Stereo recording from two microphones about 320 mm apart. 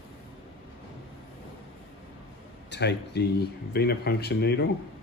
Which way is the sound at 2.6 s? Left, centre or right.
Left.